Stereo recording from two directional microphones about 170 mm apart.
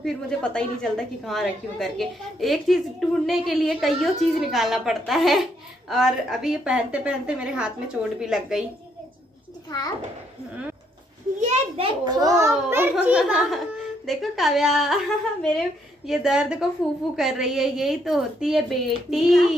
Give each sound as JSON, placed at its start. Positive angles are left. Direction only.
{"t": 0.0, "sound": "a woman's voice", "side_deg": 5}
{"t": 11.4, "sound": "a child's voice", "side_deg": -40}
{"t": 12.0, "sound": "a child's voice", "side_deg": -20}